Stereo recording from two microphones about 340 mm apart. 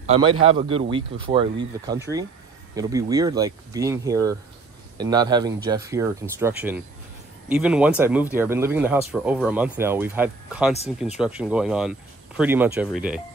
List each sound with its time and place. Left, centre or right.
0.0 s speech: centre